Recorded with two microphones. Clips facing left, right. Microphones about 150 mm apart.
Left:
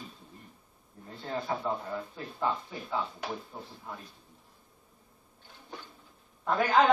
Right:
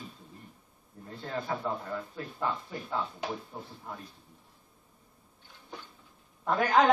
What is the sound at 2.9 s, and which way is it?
Speech, centre (ahead or behind).